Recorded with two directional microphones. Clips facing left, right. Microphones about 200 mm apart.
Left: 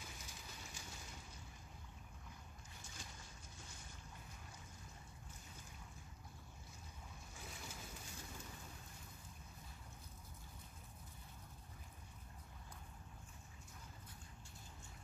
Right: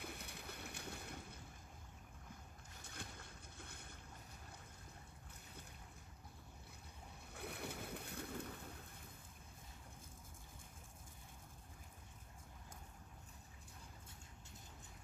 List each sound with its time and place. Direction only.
0.0 s a sound: 60° right (ahead or behind)
2.8 s boat: 60° right (ahead or behind)
7.3 s boat: 60° right (ahead or behind)